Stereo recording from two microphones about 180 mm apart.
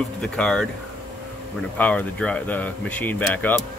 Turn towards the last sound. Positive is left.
turn(degrees=10)  # may be behind; listen again after turning